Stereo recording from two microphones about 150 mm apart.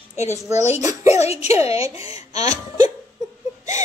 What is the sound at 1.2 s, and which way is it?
Speech, 45° left (ahead or behind).